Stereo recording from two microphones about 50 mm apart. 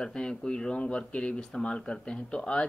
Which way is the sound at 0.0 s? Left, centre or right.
Centre.